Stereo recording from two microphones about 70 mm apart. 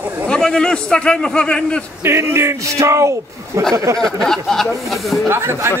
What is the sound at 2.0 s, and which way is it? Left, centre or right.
A man's voice, right.